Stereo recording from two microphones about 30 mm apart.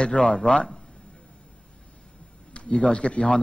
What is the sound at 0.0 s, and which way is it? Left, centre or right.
Speech, left.